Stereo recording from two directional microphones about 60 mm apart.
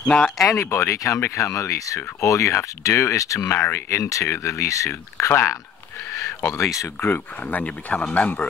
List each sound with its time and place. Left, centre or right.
0.0 s speech: centre
0.5 s speech: left
3.4 s speech: left
4.0 s speech: left
5.3 s speech: left
7.4 s speech: left